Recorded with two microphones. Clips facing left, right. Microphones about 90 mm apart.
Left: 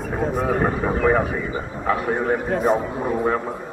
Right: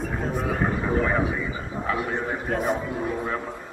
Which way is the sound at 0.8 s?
35° left (ahead or behind).